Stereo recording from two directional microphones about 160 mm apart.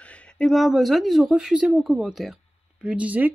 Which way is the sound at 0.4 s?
Centre (ahead or behind).